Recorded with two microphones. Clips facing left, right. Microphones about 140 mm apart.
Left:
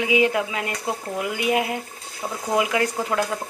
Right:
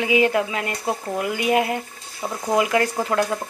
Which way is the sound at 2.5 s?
5° left (ahead or behind).